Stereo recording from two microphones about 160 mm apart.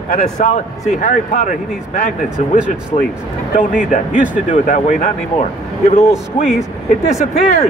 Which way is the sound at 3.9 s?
50° left (ahead or behind).